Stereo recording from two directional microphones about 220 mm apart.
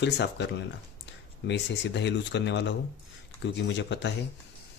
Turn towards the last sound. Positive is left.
turn(degrees=55)  # may be behind; listen again after turning